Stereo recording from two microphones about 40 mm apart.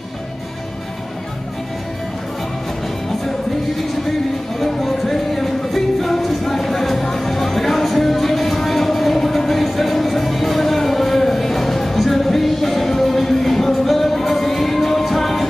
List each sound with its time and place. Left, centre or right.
4.6 s music: centre